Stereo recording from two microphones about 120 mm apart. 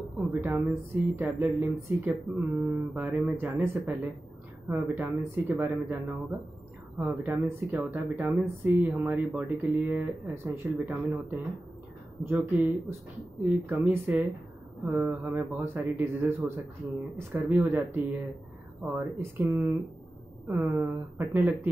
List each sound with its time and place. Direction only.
0.3 s speech: 15° right (ahead or behind)